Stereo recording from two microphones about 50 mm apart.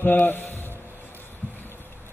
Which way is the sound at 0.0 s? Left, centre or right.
Left.